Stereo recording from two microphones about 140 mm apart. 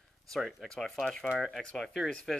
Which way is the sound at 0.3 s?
Centre (ahead or behind).